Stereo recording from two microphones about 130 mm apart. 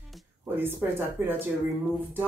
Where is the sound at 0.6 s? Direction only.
15° right (ahead or behind).